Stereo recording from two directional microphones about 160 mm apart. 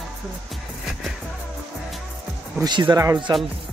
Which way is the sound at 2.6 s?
25° right (ahead or behind).